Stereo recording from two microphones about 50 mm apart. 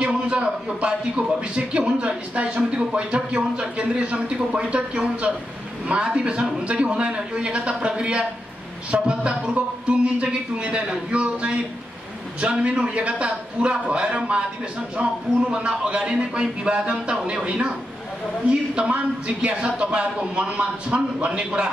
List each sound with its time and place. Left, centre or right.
0.0 s a man's voice: right
15.5 s speech: centre